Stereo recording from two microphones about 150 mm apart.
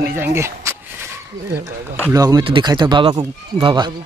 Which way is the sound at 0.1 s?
15° right (ahead or behind).